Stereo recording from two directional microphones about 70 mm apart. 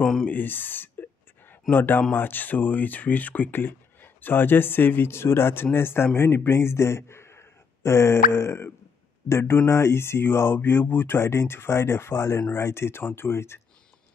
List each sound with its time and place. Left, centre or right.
0.0 s speech: centre
0.3 s speech: left